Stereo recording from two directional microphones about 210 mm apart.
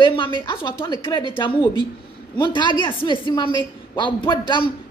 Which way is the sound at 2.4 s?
20° left (ahead or behind).